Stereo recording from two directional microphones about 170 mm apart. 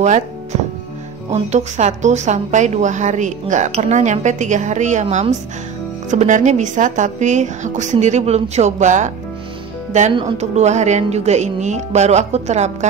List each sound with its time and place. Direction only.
1.5 s a woman's voice: 45° right (ahead or behind)
10.1 s a woman's voice: 40° right (ahead or behind)